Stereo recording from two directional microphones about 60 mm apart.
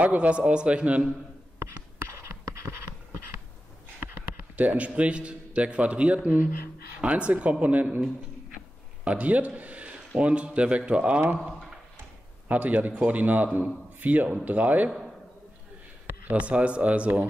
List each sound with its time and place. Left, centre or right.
0.0 s a man's voice: right
2.0 s a sound: right
4.4 s a man's voice: right
9.0 s a man's voice: right
12.4 s a man's voice: right
14.9 s a sound: centre
16.3 s a man's voice: right